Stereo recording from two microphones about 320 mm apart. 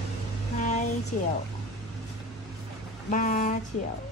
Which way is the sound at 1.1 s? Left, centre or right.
Left.